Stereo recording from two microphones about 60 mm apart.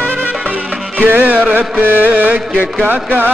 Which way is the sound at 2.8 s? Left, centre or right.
Right.